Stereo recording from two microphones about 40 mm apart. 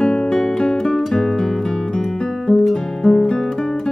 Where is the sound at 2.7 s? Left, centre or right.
Centre.